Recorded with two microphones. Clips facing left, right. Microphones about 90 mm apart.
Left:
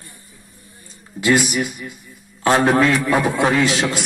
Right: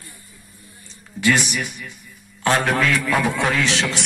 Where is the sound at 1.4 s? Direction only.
40° left (ahead or behind); by 3.2 s 25° left (ahead or behind).